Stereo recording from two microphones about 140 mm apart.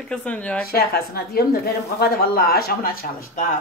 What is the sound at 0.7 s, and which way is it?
Speech, 90° left.